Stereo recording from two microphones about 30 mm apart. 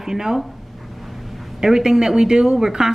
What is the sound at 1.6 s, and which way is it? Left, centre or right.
Speech, centre.